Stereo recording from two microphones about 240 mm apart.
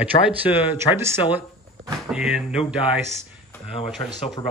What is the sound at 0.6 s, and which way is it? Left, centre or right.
Speech, centre.